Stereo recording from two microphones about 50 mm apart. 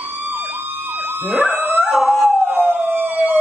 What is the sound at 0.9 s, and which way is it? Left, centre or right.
Emergency vehicle, right.